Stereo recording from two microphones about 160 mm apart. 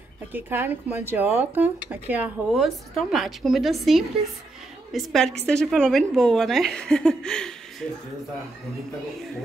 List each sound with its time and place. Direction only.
0.3 s a woman's voice: 15° right (ahead or behind); by 7.5 s 5° left (ahead or behind)